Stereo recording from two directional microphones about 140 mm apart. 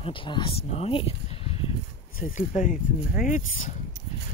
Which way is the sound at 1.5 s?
45° left (ahead or behind).